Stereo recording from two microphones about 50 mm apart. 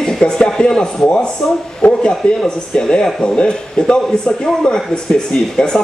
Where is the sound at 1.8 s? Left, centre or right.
Left.